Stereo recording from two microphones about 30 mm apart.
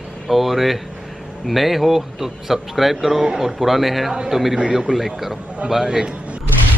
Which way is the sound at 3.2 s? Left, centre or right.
Centre.